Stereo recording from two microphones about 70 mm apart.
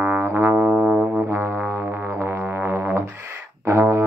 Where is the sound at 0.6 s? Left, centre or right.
Centre.